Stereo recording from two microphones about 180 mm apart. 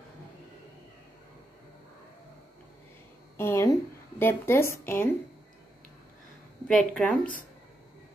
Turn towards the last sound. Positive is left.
turn(degrees=5)  # may be behind; listen again after turning